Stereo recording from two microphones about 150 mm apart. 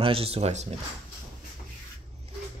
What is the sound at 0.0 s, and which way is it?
Speech, 40° right (ahead or behind).